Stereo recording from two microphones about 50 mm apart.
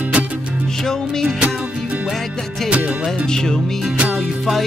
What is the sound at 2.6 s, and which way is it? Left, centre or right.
Music, right.